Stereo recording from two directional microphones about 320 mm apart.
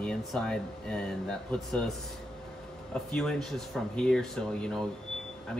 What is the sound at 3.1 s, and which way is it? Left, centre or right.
Speech, centre.